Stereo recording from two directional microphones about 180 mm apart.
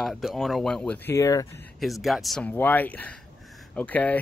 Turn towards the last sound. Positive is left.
turn(degrees=10)  # may be behind; listen again after turning